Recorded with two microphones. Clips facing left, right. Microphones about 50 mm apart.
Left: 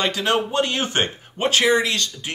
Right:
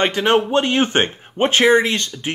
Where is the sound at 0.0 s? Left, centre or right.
Right.